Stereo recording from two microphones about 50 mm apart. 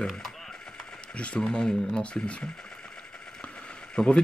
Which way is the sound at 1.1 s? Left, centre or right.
Left.